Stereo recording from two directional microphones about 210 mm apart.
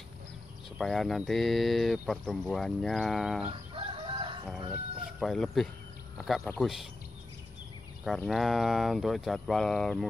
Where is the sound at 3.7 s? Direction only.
25° right (ahead or behind).